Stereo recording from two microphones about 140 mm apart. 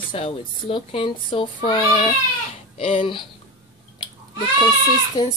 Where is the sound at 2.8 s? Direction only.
45° left (ahead or behind).